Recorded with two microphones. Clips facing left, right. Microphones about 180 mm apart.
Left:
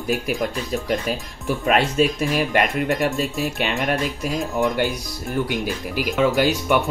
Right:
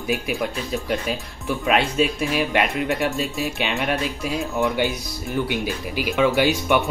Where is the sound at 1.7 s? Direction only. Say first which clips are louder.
Left 1 dB; 40° left (ahead or behind).